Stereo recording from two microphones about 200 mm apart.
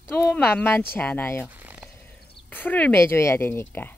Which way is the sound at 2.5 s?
10° left (ahead or behind).